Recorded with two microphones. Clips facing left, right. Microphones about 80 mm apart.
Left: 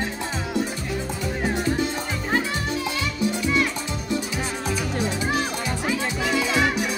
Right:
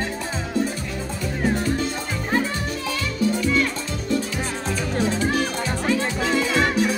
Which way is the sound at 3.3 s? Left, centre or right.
Centre.